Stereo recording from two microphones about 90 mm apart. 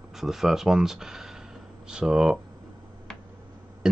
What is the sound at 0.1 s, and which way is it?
Speech, 5° right (ahead or behind).